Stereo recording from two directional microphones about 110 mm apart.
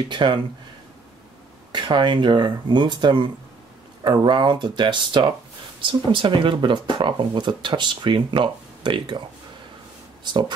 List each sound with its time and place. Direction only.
0.1 s speech: 45° right (ahead or behind)
1.7 s speech: 45° right (ahead or behind)